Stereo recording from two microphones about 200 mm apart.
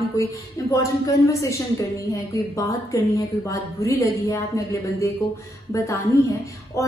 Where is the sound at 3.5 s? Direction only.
15° left (ahead or behind).